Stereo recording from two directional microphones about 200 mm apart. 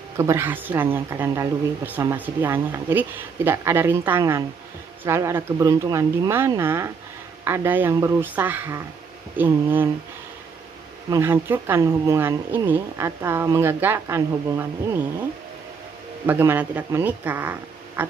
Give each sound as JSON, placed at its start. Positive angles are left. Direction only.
{"t": 0.2, "sound": "speech", "side_deg": -10}
{"t": 11.1, "sound": "speech", "side_deg": -15}
{"t": 16.3, "sound": "speech", "side_deg": -10}